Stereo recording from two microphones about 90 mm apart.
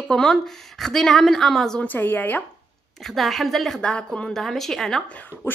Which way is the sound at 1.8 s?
20° left (ahead or behind).